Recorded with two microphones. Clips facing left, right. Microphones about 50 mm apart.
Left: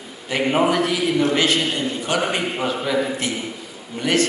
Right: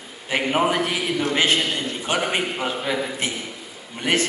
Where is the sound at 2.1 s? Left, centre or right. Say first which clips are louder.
Left 1 dB; right.